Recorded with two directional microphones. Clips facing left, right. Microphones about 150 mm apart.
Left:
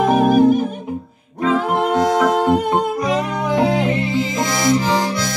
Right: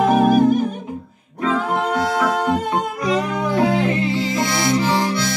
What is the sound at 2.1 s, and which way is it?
Music, 20° left (ahead or behind).